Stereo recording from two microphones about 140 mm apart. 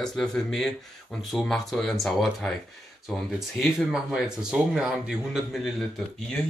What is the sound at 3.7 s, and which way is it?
Speech, centre (ahead or behind).